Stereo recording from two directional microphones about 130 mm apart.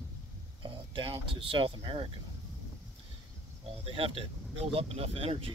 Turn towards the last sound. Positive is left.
turn(degrees=-50)  # may be behind; listen again after turning